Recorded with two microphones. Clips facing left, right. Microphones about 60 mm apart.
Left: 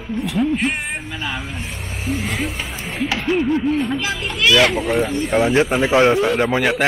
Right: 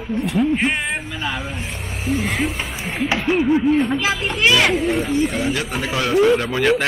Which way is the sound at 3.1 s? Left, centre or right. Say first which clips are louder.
Right 2 dB; centre.